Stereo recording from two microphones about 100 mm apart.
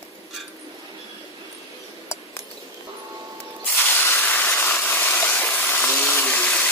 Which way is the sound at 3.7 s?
20° left (ahead or behind).